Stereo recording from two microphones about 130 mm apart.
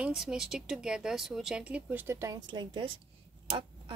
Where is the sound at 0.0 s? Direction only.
5° right (ahead or behind).